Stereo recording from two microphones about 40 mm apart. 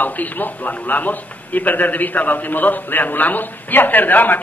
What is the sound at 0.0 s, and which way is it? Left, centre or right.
A man's voice, left.